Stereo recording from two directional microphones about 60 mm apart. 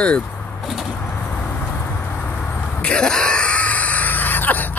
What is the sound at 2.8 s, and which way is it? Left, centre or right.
Screaming, centre.